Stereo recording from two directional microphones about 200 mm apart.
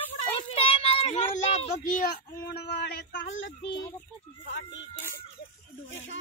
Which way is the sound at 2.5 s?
50° left (ahead or behind).